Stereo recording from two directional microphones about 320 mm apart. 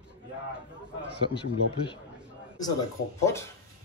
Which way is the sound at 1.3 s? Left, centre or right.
Centre.